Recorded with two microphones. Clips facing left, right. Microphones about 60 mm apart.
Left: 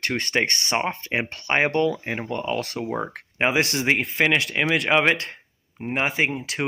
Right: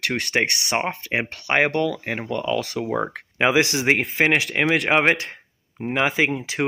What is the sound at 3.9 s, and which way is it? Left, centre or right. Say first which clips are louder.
Speech: right 1 dB; right.